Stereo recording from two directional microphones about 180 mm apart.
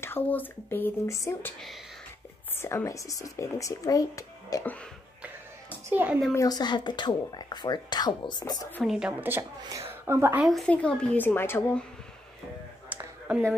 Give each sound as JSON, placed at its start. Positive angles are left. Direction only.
{"t": 0.0, "sound": "speech", "side_deg": 10}
{"t": 2.5, "sound": "speech", "side_deg": 15}
{"t": 5.9, "sound": "a woman's voice", "side_deg": -10}
{"t": 6.3, "sound": "speech", "side_deg": 20}
{"t": 8.8, "sound": "a woman's voice", "side_deg": -5}
{"t": 9.6, "sound": "a woman's voice", "side_deg": -20}
{"t": 10.4, "sound": "speech", "side_deg": 0}